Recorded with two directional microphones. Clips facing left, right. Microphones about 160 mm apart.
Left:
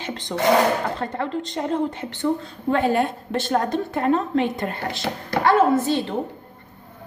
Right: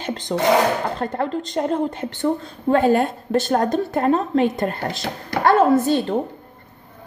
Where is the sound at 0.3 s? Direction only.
45° right (ahead or behind).